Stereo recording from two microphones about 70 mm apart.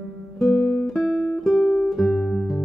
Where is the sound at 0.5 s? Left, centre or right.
Left.